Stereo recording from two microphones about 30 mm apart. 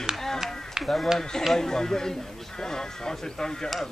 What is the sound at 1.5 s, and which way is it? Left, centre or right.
Speech, centre.